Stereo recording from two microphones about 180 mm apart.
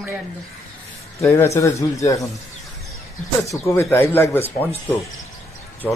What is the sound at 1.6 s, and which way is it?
Speech, 15° left (ahead or behind).